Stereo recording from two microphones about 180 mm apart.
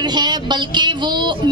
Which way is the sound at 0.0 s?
25° right (ahead or behind).